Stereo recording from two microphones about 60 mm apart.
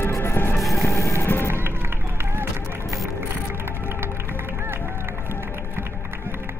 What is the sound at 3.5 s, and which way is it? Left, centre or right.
Music, right.